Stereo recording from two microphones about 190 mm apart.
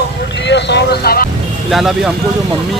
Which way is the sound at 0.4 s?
65° left (ahead or behind).